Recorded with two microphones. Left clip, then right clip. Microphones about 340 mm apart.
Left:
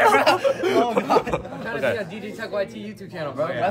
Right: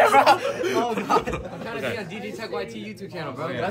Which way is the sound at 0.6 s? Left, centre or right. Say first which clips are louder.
Left 4 dB; centre.